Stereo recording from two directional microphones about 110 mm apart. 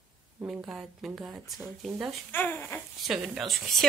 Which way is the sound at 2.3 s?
20° left (ahead or behind).